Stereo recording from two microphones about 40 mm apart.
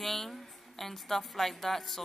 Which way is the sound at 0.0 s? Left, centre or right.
Centre.